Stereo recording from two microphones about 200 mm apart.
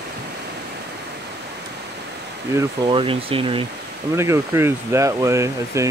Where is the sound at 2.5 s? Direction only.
25° right (ahead or behind).